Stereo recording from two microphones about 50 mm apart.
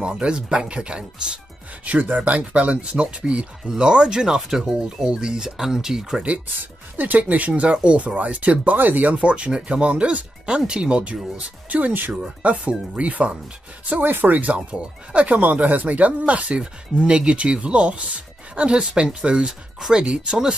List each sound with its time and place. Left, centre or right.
0.0 s speech: centre
1.9 s speech: right; by 6.2 s centre
6.6 s speech: right
12.4 s speech: right
13.8 s speech: right; by 20.5 s centre